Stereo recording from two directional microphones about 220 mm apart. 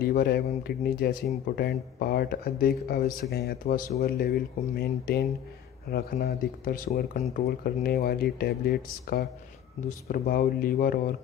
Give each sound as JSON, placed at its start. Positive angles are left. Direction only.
{"t": 0.0, "sound": "speech", "side_deg": 45}